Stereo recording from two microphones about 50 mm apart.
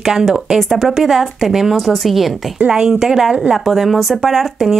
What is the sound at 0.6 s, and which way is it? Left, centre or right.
A woman's voice, centre.